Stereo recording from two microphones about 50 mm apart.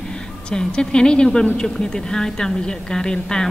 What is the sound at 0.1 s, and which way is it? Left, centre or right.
A woman's voice, centre.